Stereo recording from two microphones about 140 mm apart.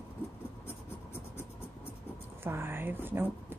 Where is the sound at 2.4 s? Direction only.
15° right (ahead or behind).